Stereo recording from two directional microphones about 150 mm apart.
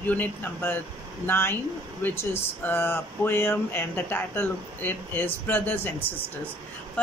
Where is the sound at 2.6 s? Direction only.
15° left (ahead or behind).